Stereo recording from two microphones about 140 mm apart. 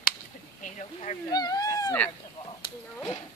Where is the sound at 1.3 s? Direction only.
25° left (ahead or behind).